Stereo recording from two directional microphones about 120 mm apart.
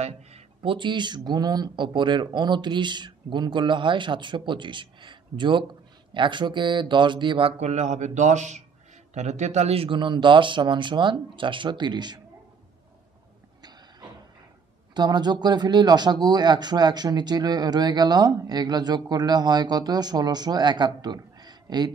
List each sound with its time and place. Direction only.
0.0 s speech: 55° right (ahead or behind)
7.6 s a man's voice: 70° right (ahead or behind); by 12.2 s 40° right (ahead or behind)
15.0 s speech: 35° right (ahead or behind)